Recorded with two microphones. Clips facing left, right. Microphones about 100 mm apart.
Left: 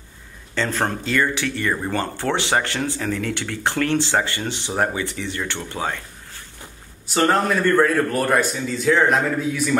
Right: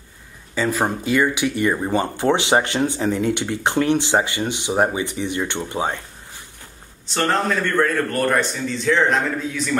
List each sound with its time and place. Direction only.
0.6 s speech: 10° right (ahead or behind)
7.1 s a man's voice: 10° left (ahead or behind)